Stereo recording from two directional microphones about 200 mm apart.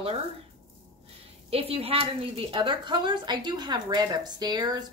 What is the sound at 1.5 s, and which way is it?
A woman's voice, 30° right (ahead or behind).